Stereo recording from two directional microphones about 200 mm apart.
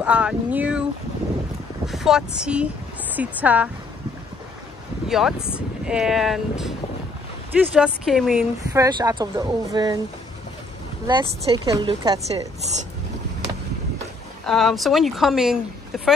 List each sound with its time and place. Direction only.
0.0 s a sound: 5° right (ahead or behind)
1.9 s speech: centre (ahead or behind)
5.0 s speech: centre (ahead or behind)
7.7 s speech: 5° right (ahead or behind)
8.7 s speech: 15° right (ahead or behind)
11.1 s speech: 20° right (ahead or behind)
14.4 s speech: centre (ahead or behind)